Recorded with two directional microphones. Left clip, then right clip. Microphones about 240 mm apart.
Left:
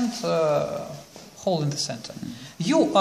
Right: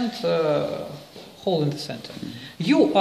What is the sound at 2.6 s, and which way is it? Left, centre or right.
Speech, left.